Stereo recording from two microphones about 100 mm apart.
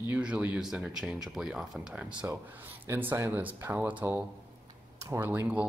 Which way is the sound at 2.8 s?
20° right (ahead or behind).